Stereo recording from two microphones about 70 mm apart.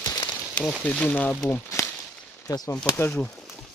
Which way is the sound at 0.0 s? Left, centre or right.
Left.